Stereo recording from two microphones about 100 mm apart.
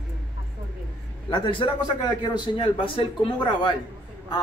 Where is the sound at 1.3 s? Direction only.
55° left (ahead or behind).